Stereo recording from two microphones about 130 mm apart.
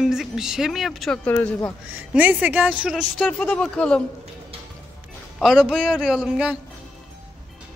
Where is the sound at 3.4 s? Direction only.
10° left (ahead or behind).